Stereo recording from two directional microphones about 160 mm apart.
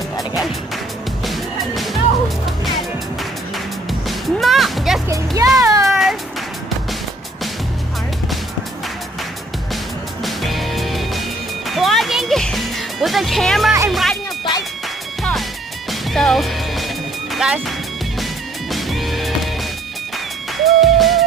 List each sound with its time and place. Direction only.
1.2 s music: centre (ahead or behind)
4.1 s music: centre (ahead or behind)
5.1 s speech: 20° right (ahead or behind)
5.6 s a sound: 20° right (ahead or behind)
5.9 s cat: centre (ahead or behind)
10.2 s music: centre (ahead or behind)
13.8 s speech: centre (ahead or behind)
15.9 s music: centre (ahead or behind)
17.3 s speech: centre (ahead or behind)
18.7 s music: centre (ahead or behind)
20.5 s music: centre (ahead or behind)